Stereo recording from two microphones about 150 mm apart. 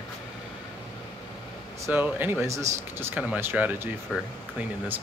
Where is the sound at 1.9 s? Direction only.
10° right (ahead or behind).